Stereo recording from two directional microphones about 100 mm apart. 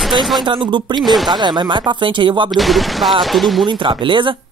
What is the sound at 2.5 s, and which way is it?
Speech, centre (ahead or behind).